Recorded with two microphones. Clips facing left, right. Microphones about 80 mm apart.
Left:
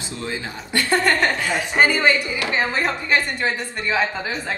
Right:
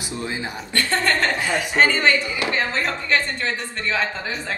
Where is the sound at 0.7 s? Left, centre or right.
Centre.